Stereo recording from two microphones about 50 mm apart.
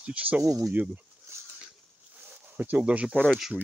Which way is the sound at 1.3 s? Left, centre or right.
Right.